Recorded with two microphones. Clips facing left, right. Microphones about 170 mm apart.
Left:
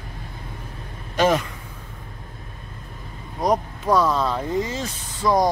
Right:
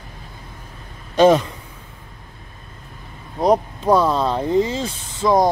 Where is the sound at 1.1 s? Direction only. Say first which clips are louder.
Right 6 dB; 25° right (ahead or behind).